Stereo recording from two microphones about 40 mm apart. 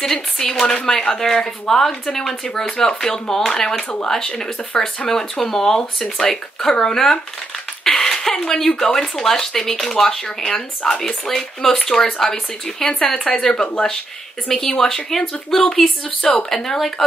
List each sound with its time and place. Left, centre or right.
0.1 s speech: centre
7.9 s a sound: centre
8.5 s speech: centre